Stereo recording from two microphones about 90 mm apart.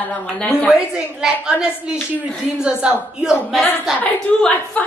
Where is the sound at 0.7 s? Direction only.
10° right (ahead or behind).